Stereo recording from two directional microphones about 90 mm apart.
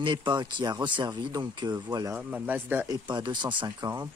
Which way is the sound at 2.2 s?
15° right (ahead or behind).